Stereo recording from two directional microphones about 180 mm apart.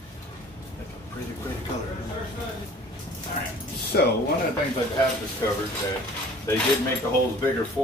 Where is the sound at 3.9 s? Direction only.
60° left (ahead or behind).